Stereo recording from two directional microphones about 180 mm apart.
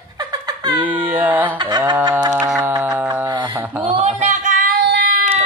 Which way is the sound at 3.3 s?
25° right (ahead or behind).